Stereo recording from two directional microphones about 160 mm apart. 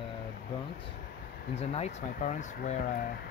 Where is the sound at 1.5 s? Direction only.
40° left (ahead or behind); by 3.1 s 60° left (ahead or behind).